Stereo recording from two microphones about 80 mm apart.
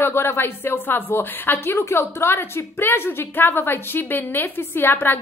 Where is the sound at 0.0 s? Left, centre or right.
Left.